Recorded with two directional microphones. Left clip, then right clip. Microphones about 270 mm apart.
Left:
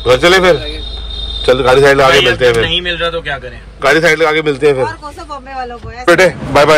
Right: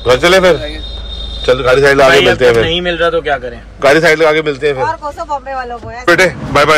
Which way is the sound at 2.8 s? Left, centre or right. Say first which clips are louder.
Right 4 dB; right.